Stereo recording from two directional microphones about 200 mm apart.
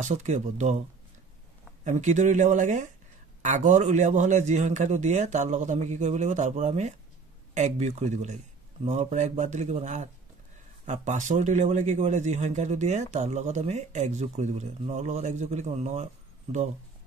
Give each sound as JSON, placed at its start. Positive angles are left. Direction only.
{"t": 0.0, "sound": "a man's voice", "side_deg": -35}
{"t": 1.9, "sound": "a man's voice", "side_deg": -35}